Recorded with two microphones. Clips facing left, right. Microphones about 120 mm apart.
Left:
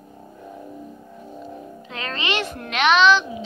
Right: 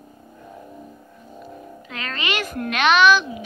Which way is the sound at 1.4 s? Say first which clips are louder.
Right 1 dB; 30° left (ahead or behind).